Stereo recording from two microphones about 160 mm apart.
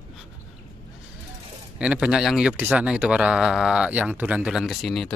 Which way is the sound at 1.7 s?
5° right (ahead or behind).